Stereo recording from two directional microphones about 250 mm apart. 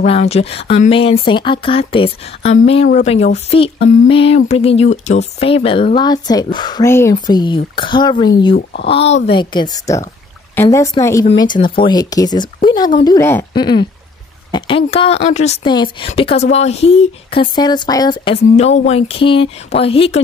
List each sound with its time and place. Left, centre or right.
0.0 s speech: left